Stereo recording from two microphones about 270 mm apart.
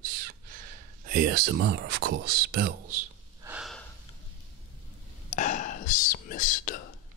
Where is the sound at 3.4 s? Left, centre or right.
Centre.